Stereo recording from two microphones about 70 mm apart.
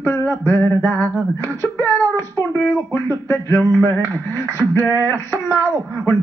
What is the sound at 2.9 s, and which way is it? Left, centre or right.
Speech, left.